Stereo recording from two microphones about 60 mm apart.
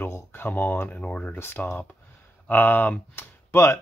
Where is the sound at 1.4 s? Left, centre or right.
Left.